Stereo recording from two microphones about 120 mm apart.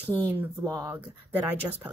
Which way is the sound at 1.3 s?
15° right (ahead or behind).